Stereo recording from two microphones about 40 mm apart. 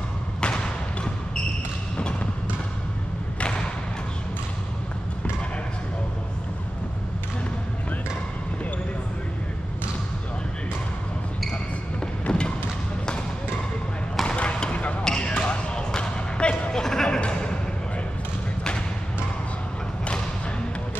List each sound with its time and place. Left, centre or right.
12.3 s thump: left
14.2 s basketball bounce: left
15.0 s basketball bounce: left
16.8 s music: centre